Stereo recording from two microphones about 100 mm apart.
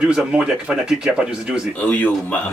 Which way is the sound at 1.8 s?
15° left (ahead or behind).